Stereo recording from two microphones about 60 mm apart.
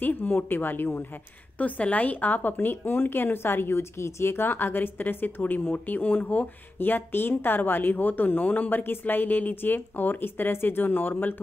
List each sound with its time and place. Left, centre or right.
0.0 s speech: left
1.6 s speech: left